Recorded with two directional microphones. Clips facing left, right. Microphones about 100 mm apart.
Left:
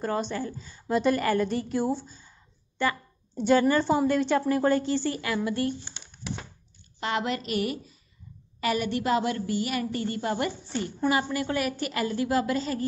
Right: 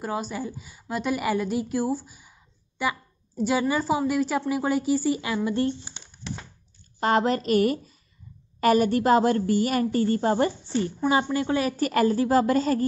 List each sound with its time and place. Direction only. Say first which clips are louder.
0.0 s a woman's voice: left 1 dB; 5° right (ahead or behind); by 5.8 s 25° right (ahead or behind)
6.2 s crushing: even; 10° left (ahead or behind)
7.0 s a woman's voice: right 7 dB; 40° right (ahead or behind)
11.7 s a woman's voice: right 7 dB; 40° right (ahead or behind)